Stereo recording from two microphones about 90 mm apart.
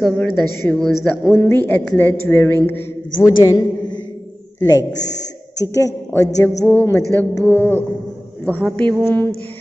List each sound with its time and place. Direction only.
0.0 s a woman's voice: 10° left (ahead or behind)
0.7 s speech: 5° left (ahead or behind)
1.2 s a woman's voice: 25° left (ahead or behind)
4.6 s a man's voice: 45° left (ahead or behind)
6.4 s a woman's voice: 20° left (ahead or behind)